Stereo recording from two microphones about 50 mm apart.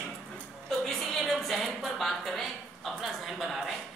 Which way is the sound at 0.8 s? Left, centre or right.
Centre.